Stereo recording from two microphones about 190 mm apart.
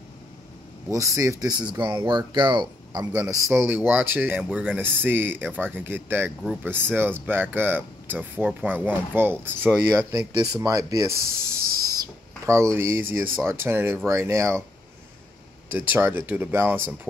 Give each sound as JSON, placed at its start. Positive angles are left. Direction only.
{"t": 0.8, "sound": "speech", "side_deg": -15}
{"t": 10.6, "sound": "speech", "side_deg": -20}
{"t": 12.4, "sound": "speech", "side_deg": -15}
{"t": 15.7, "sound": "speech", "side_deg": -10}